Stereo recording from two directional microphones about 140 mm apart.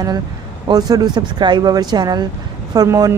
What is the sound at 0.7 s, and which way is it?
A woman's voice, 30° right (ahead or behind).